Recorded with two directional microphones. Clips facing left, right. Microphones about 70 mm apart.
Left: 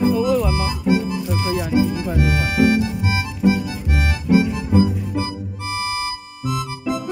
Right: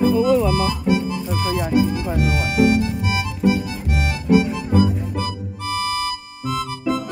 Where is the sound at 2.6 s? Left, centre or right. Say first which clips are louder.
Even; left.